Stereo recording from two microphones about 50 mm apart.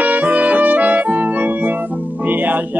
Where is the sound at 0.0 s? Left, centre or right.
Right.